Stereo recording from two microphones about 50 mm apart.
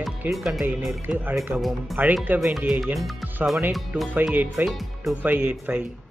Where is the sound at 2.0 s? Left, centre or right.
Right.